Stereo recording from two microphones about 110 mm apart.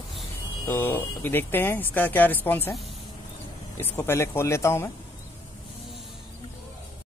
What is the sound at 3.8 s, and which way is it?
Speech, 20° left (ahead or behind).